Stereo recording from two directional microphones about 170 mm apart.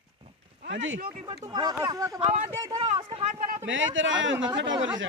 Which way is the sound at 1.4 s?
20° right (ahead or behind).